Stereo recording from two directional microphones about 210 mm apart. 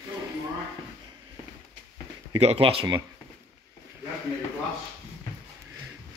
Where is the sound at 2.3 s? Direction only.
30° right (ahead or behind).